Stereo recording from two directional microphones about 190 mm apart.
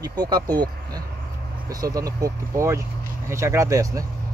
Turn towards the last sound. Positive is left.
turn(degrees=-15)  # may be behind; listen again after turning